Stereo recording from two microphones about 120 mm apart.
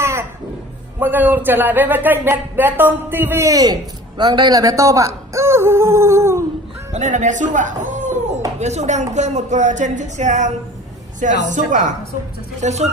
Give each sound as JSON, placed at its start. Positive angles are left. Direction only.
{"t": 0.0, "sound": "a sound", "side_deg": -20}
{"t": 0.9, "sound": "a man's voice", "side_deg": -15}
{"t": 6.9, "sound": "speech", "side_deg": -85}
{"t": 8.5, "sound": "a woman's voice", "side_deg": -70}
{"t": 12.5, "sound": "speech", "side_deg": -70}